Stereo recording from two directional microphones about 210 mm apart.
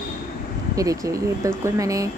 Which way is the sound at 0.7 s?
15° right (ahead or behind).